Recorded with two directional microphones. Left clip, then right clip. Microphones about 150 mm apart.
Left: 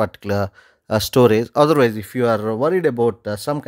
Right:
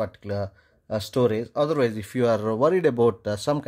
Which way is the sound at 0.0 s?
40° left (ahead or behind).